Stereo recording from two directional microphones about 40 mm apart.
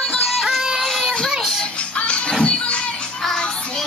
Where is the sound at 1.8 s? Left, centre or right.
Left.